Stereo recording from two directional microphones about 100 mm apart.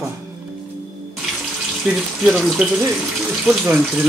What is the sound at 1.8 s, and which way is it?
Speech, centre (ahead or behind).